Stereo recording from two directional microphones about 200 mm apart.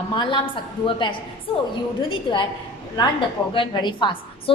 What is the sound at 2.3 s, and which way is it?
A woman's voice, 25° left (ahead or behind).